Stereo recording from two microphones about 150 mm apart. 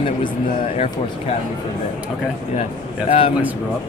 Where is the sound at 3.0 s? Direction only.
40° left (ahead or behind).